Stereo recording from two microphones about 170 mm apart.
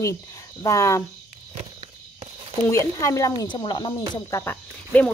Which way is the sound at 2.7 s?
20° left (ahead or behind).